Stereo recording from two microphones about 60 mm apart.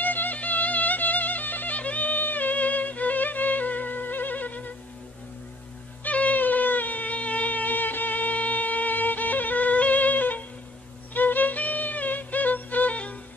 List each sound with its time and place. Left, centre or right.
0.0 s music: left
6.0 s a sound: left
11.1 s music: left